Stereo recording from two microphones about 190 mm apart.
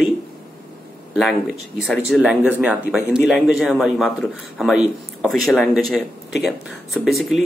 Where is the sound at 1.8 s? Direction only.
Centre (ahead or behind).